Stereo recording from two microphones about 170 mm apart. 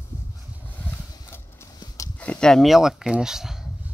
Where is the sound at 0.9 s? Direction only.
15° left (ahead or behind).